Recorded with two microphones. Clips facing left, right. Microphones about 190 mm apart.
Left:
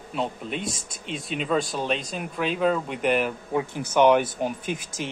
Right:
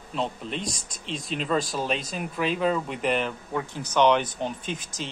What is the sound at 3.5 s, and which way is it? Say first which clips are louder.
Speech: left 4 dB; 15° left (ahead or behind).